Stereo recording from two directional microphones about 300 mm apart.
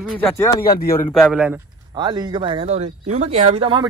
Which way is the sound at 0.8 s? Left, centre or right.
Left.